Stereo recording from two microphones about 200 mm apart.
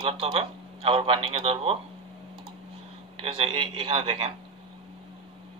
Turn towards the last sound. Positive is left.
turn(degrees=-25)  # may be behind; listen again after turning